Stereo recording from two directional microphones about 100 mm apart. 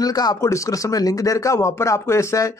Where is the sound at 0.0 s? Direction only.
40° left (ahead or behind).